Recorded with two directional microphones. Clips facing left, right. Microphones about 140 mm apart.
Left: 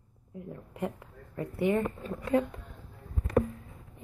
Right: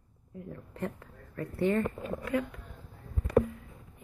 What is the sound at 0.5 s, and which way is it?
Speech, 15° left (ahead or behind).